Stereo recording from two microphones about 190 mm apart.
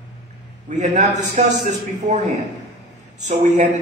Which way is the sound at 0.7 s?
40° right (ahead or behind).